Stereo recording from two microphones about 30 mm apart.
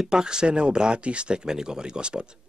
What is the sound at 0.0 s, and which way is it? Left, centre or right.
Speech, right.